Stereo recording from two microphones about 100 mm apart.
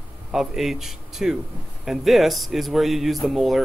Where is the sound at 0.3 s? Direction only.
5° right (ahead or behind).